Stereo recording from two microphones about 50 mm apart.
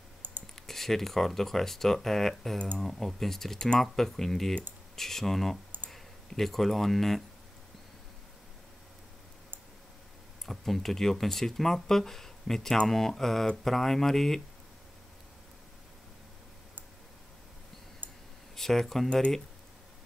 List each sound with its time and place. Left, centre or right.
0.2 s typing: right
0.6 s speech: centre
10.4 s speech: centre
18.0 s clicking: right
18.6 s speech: centre